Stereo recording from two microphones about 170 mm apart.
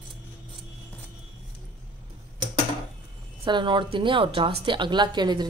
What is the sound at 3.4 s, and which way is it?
A woman's voice, 30° right (ahead or behind).